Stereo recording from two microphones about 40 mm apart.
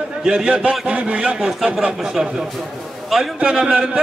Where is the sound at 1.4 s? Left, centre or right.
Centre.